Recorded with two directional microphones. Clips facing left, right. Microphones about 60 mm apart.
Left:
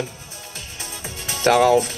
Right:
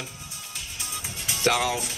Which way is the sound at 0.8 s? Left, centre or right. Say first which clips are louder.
Left 3 dB; left.